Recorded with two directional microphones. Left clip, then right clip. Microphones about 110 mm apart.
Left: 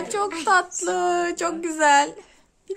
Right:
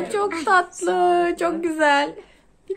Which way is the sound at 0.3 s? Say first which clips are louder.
Right 1 dB; 20° left (ahead or behind).